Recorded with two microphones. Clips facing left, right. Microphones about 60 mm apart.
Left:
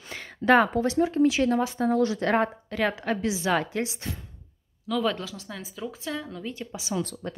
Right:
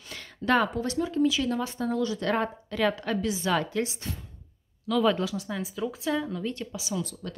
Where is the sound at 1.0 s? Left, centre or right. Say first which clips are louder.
Left 3 dB; left.